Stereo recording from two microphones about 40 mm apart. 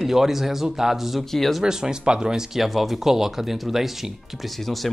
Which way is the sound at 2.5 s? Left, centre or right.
Centre.